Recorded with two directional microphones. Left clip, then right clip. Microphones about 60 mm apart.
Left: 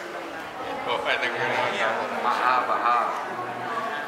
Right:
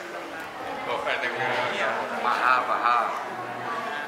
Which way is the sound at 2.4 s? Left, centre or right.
Right.